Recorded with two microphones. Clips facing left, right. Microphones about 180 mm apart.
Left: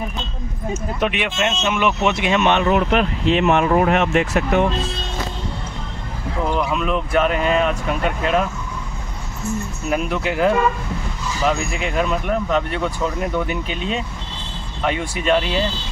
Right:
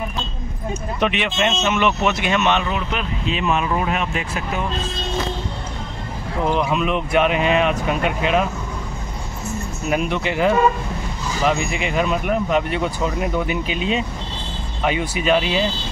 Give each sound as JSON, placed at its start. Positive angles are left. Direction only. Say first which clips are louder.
{"t": 0.9, "sound": "speech", "louder": "right 2 dB", "side_deg": 5}
{"t": 2.0, "sound": "speech", "louder": "left 1 dB", "side_deg": 25}
{"t": 2.5, "sound": "speech", "louder": "left 6 dB", "side_deg": 55}
{"t": 6.5, "sound": "speech", "louder": "right 1 dB", "side_deg": -5}
{"t": 9.8, "sound": "speech", "louder": "even", "side_deg": 0}